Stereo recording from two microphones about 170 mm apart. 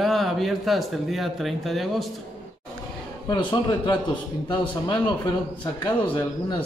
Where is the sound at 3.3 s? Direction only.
25° left (ahead or behind).